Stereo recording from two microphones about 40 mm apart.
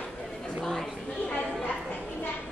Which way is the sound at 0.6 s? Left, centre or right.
Centre.